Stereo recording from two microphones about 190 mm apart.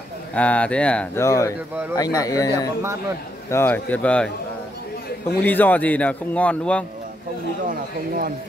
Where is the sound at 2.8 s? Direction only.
15° right (ahead or behind).